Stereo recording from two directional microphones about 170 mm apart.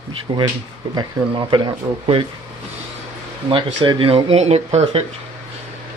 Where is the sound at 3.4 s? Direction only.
30° right (ahead or behind).